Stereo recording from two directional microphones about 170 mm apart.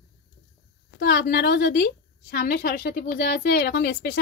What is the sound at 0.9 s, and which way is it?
A woman's voice, 70° left (ahead or behind).